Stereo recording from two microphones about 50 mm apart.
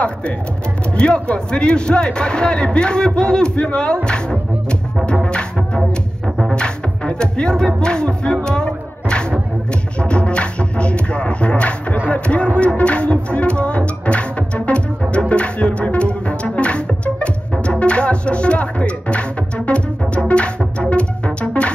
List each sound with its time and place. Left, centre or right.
0.9 s a man's voice: left
6.5 s music: centre
10.0 s a man's voice: left
14.7 s music: left